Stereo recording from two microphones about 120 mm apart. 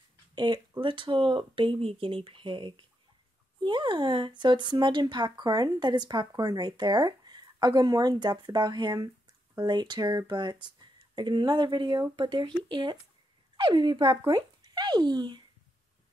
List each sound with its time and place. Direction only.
0.3 s speech: 40° right (ahead or behind)